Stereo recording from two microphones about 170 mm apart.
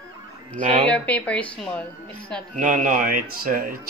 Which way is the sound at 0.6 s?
45° right (ahead or behind).